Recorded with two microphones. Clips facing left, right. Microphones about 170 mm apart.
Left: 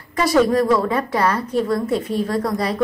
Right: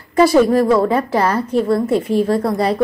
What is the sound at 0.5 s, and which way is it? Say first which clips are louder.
A woman's voice: right 4 dB; 30° right (ahead or behind).